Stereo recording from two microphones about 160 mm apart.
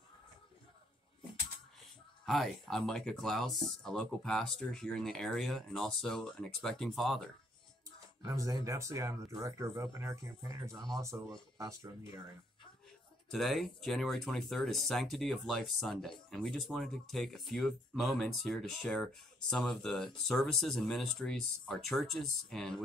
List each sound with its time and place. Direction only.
2.2 s speech: centre (ahead or behind)
8.2 s speech: 20° right (ahead or behind)
13.3 s speech: centre (ahead or behind)